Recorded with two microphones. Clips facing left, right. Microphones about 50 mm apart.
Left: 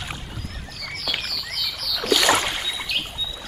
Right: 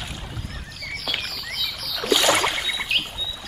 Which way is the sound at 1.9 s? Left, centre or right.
Centre.